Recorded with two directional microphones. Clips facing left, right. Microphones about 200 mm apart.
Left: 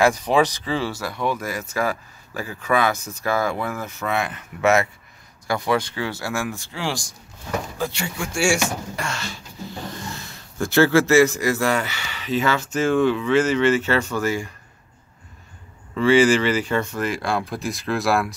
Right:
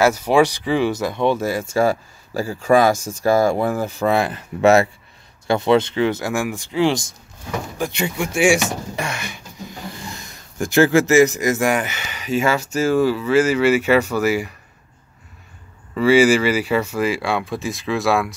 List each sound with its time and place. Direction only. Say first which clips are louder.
0.0 s speech: right 3 dB; 10° right (ahead or behind)
15.9 s speech: right 2 dB; 10° right (ahead or behind)